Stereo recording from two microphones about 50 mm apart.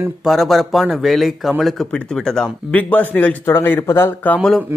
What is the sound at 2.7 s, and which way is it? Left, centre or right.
Speech, left.